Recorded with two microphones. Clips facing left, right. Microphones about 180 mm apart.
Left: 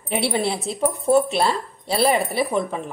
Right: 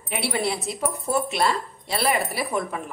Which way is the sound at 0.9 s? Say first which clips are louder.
Left 10 dB; centre (ahead or behind).